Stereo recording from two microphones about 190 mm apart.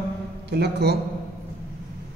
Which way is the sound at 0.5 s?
60° right (ahead or behind).